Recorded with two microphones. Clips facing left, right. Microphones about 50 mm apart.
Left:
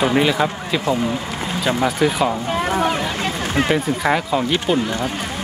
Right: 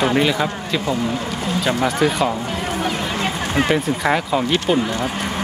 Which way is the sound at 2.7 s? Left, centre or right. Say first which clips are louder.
Left 4 dB; centre.